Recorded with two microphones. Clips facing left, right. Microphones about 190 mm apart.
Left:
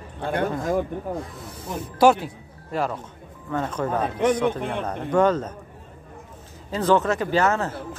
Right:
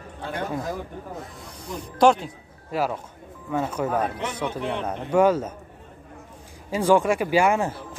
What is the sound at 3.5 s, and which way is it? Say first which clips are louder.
Speech: even; 10° right (ahead or behind).